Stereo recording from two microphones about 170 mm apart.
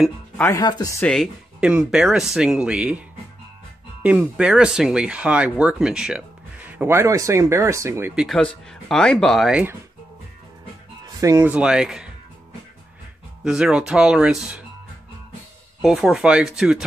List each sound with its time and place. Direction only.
0.4 s speech: 20° left (ahead or behind)
1.0 s speech: centre (ahead or behind)
4.0 s speech: 5° right (ahead or behind)
8.2 s speech: centre (ahead or behind)
11.1 s speech: 15° right (ahead or behind)
13.4 s speech: 5° right (ahead or behind)
15.8 s speech: centre (ahead or behind)